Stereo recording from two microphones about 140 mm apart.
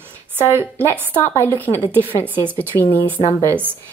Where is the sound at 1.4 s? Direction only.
15° left (ahead or behind).